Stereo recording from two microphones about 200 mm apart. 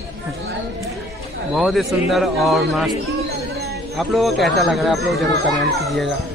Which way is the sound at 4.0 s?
Centre (ahead or behind).